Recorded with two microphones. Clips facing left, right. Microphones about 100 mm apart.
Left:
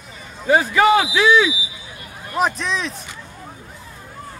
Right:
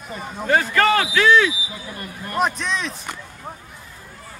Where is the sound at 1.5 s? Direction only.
50° right (ahead or behind).